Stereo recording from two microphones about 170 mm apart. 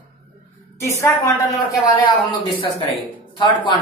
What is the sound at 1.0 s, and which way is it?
Speech, 20° left (ahead or behind).